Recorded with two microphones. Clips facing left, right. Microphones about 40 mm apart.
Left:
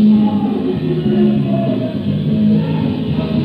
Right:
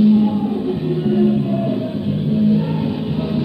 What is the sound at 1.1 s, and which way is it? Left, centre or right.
Music, left.